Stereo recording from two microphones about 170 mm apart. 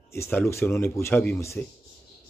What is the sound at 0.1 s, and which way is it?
Speech, 15° left (ahead or behind).